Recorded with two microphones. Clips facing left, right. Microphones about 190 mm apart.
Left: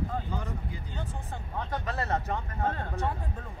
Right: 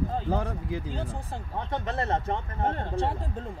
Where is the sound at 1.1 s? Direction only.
30° right (ahead or behind).